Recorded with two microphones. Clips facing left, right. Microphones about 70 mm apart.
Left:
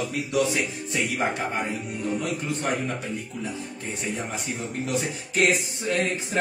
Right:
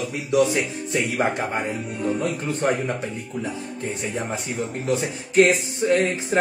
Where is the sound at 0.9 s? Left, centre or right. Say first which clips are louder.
Right 4 dB; right.